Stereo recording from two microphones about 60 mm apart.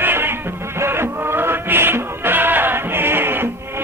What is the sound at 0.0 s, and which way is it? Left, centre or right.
Music, right.